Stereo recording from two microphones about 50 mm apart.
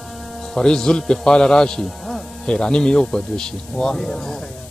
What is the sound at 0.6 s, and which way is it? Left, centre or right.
A man's voice, centre.